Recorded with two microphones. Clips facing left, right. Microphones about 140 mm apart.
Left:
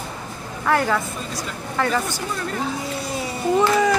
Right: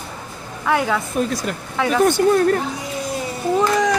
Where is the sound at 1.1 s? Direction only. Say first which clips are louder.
Right 8 dB; 65° right (ahead or behind).